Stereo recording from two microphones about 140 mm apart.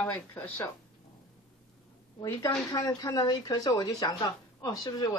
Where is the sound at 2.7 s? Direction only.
30° left (ahead or behind).